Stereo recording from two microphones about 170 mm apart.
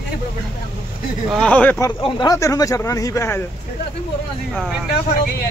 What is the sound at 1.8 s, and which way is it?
Speech, 20° left (ahead or behind).